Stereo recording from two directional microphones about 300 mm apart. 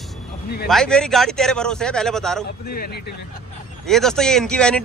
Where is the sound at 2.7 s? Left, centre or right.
Left.